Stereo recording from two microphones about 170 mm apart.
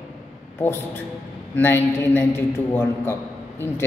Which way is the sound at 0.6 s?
10° left (ahead or behind).